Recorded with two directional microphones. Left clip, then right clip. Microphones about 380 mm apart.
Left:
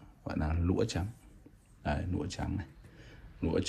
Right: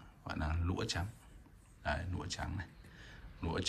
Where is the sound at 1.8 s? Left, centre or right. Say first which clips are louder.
Left 3 dB; centre.